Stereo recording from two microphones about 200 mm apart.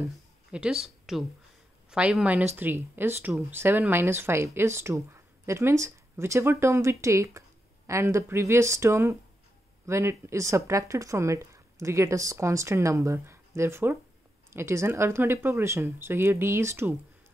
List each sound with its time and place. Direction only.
0.5 s a woman's voice: 5° right (ahead or behind)